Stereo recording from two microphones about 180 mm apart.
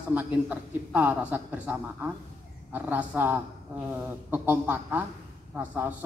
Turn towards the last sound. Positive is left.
turn(degrees=-10)  # may be behind; listen again after turning